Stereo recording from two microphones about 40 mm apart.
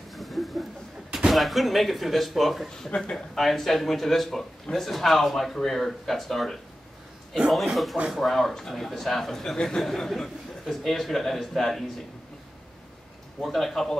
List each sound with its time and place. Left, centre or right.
0.1 s a sound: centre
1.3 s speech: centre
2.9 s speech: left
3.3 s speech: centre
7.7 s speech: centre
13.4 s speech: centre